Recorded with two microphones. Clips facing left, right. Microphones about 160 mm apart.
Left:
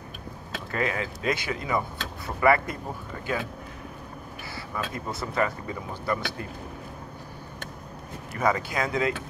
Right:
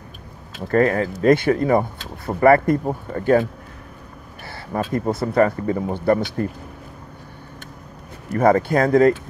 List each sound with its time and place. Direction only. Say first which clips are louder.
0.7 s speech: right 12 dB; 50° right (ahead or behind)
4.5 s a sound: right 9 dB; 55° right (ahead or behind)
4.9 s speech: right 12 dB; 50° right (ahead or behind)
8.3 s speech: right 10 dB; 50° right (ahead or behind)